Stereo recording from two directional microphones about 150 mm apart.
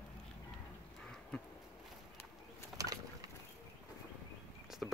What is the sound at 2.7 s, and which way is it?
Bird, 25° right (ahead or behind).